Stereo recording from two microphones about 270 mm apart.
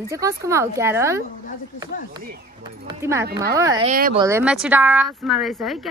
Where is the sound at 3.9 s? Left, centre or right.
Right.